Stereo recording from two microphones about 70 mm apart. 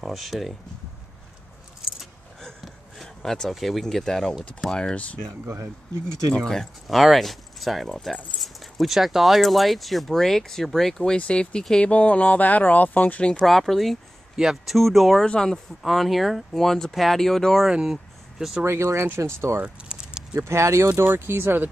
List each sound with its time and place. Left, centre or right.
0.0 s speech: centre
2.4 s a sound: centre
4.6 s speech: centre
5.2 s speech: right
6.3 s speech: centre
13.4 s speech: centre
17.6 s speech: centre
18.6 s speech: right
19.6 s keys jangling: centre
20.3 s speech: right
20.9 s speech: right